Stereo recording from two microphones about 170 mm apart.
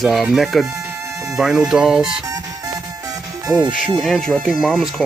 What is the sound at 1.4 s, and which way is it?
Speech, 5° right (ahead or behind).